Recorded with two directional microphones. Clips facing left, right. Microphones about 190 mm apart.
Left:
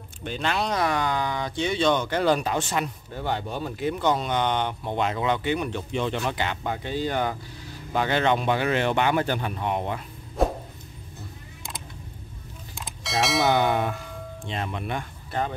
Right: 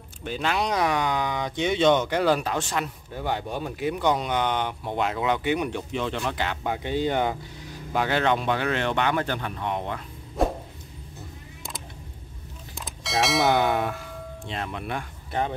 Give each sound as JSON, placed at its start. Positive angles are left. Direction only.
{"t": 0.2, "sound": "speech", "side_deg": -5}
{"t": 3.1, "sound": "speech", "side_deg": -10}
{"t": 5.8, "sound": "speech", "side_deg": 0}
{"t": 6.6, "sound": "speech", "side_deg": -15}
{"t": 7.9, "sound": "speech", "side_deg": -5}
{"t": 10.4, "sound": "a sound", "side_deg": 0}
{"t": 12.7, "sound": "speech", "side_deg": 0}